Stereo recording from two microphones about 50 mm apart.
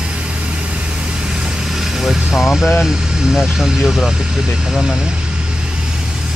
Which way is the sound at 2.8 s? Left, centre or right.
Centre.